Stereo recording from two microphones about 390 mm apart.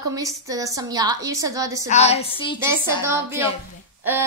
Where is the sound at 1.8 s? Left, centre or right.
Centre.